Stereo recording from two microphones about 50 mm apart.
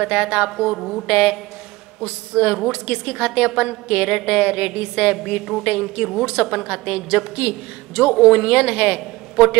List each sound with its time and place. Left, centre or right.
0.0 s a woman's voice: right
0.7 s a woman's voice: centre
1.0 s a woman's voice: centre